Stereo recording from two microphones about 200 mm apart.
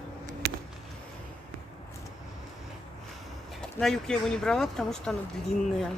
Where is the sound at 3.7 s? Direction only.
5° left (ahead or behind).